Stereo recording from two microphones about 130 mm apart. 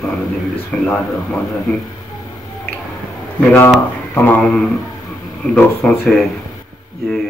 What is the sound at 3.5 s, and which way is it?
Speech, 15° left (ahead or behind).